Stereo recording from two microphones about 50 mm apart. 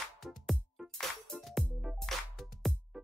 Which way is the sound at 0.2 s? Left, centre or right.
Centre.